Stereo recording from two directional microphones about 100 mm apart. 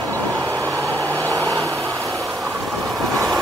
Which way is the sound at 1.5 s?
30° right (ahead or behind).